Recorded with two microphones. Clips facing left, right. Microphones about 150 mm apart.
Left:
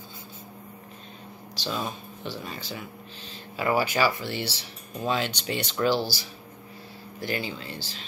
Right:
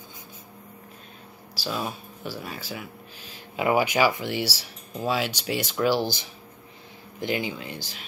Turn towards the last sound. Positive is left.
turn(degrees=-15)  # may be behind; listen again after turning